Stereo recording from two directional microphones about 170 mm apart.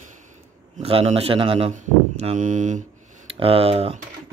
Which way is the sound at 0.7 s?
35° right (ahead or behind).